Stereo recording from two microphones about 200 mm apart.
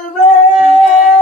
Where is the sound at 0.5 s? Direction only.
40° left (ahead or behind).